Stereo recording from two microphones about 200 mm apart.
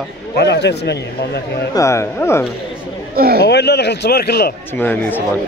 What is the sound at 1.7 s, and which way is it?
Speech, 15° left (ahead or behind).